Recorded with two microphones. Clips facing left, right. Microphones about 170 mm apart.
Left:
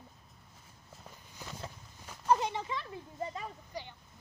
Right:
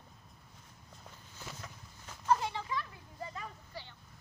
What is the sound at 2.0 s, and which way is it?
Speech, 20° left (ahead or behind).